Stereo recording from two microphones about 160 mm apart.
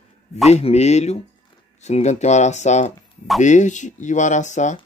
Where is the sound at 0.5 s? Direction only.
40° left (ahead or behind).